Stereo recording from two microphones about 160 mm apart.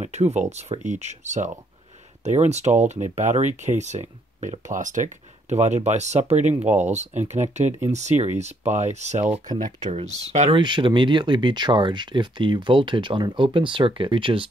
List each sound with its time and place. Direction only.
0.0 s speech: 45° right (ahead or behind)
9.8 s speech: 35° right (ahead or behind)